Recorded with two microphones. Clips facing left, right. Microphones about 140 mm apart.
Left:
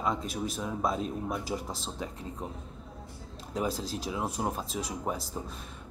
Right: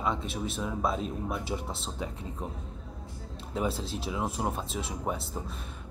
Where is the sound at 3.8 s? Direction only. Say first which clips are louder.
Even; 40° left (ahead or behind).